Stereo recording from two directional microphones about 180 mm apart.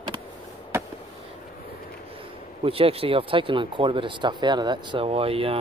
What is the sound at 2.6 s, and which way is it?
Speech, 30° right (ahead or behind).